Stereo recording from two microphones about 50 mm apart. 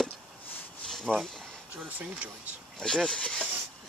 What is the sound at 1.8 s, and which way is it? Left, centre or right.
Speech, right.